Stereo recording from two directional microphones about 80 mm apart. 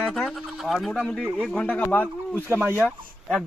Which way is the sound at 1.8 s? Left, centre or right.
Left.